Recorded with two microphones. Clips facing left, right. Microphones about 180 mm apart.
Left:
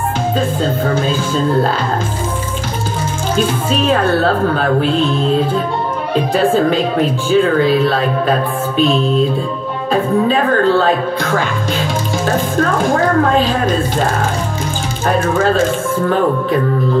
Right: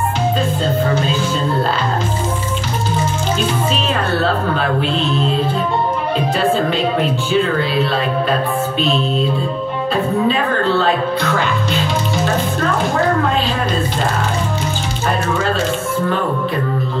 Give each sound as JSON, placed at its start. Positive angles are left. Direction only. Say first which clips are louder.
{"t": 0.8, "sound": "a woman's voice", "louder": "left 1 dB", "side_deg": 45}
{"t": 3.3, "sound": "a woman's voice", "louder": "left 7 dB", "side_deg": 50}
{"t": 10.2, "sound": "a woman's voice", "louder": "left 3 dB", "side_deg": 45}
{"t": 15.0, "sound": "a woman's voice", "louder": "left 5 dB", "side_deg": 50}